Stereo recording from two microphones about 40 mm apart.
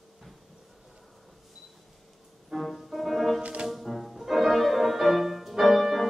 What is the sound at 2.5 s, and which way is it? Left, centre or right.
Music, centre.